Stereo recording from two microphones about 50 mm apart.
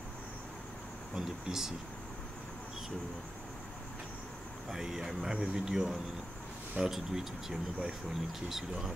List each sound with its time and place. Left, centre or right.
1.1 s speech: centre
4.6 s speech: centre